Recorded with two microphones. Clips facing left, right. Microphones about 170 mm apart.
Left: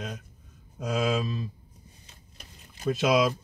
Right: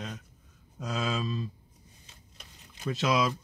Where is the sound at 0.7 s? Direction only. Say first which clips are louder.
Left 5 dB; 15° left (ahead or behind).